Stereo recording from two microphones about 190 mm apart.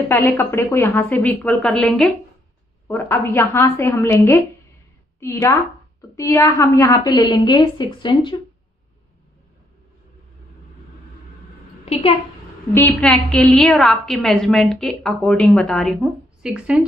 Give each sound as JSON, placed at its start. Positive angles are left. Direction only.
{"t": 0.1, "sound": "a woman's voice", "side_deg": 10}
{"t": 11.9, "sound": "a woman's voice", "side_deg": 30}
{"t": 12.7, "sound": "a woman's voice", "side_deg": 10}